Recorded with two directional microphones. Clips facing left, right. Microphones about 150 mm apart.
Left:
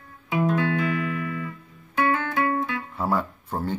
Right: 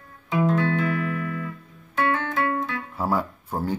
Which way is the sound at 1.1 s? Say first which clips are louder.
Even; 45° right (ahead or behind).